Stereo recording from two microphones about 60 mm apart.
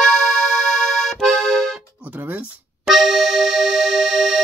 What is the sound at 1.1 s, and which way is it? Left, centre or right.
Accordion, centre.